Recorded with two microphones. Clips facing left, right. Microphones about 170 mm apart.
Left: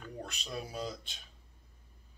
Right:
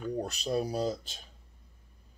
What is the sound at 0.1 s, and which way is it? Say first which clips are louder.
Speech: right 10 dB; 40° right (ahead or behind).